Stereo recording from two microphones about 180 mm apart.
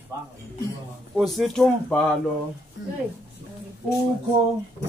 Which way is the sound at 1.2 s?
Centre (ahead or behind).